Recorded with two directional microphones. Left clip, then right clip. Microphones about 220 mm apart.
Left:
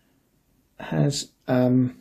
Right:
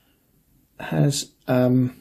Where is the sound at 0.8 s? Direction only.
Centre (ahead or behind).